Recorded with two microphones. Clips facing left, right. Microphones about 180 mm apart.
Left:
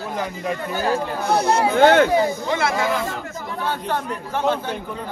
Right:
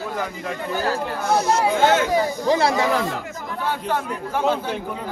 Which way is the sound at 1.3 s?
60° left (ahead or behind).